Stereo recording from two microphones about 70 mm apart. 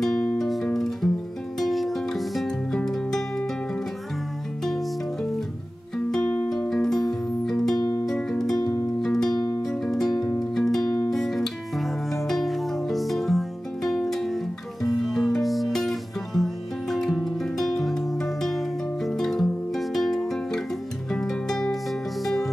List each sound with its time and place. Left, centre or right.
0.0 s music: centre
4.6 s music: centre
6.2 s music: left
6.7 s music: centre